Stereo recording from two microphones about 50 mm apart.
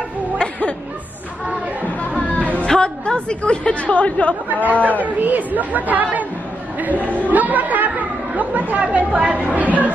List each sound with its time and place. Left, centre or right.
0.4 s music: left
2.3 s music: right
2.6 s a woman's voice: centre
4.8 s speech: right